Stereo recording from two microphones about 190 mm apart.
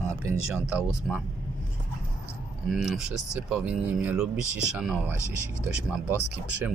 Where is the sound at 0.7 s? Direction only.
5° right (ahead or behind).